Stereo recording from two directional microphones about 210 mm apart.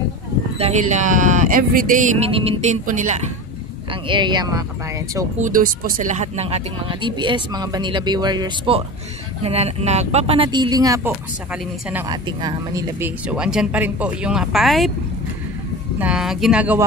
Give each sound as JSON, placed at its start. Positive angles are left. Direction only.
{"t": 0.6, "sound": "speech", "side_deg": -30}
{"t": 3.9, "sound": "speech", "side_deg": -20}
{"t": 5.4, "sound": "speech", "side_deg": -40}
{"t": 16.0, "sound": "speech", "side_deg": -5}